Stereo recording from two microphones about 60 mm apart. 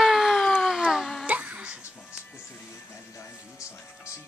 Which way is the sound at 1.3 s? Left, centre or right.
Right.